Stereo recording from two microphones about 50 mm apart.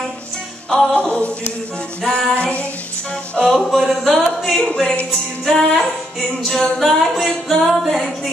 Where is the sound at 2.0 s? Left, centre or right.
Centre.